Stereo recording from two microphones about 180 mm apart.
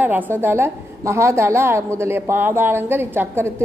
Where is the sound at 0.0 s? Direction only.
10° right (ahead or behind).